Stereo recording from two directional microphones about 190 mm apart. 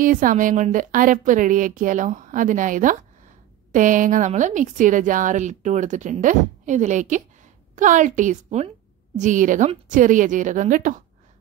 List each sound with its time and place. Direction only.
0.0 s a woman's voice: 45° right (ahead or behind)